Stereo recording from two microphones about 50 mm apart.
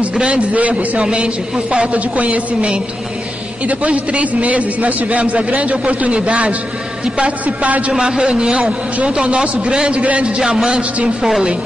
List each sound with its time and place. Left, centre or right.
0.0 s a man's voice: right
1.0 s a man's voice: centre
7.9 s a man's voice: centre